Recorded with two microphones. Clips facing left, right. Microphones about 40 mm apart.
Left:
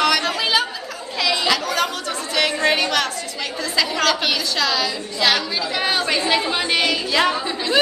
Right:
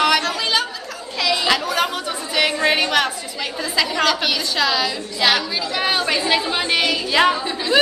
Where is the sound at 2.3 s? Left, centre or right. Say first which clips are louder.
Right 1 dB; centre.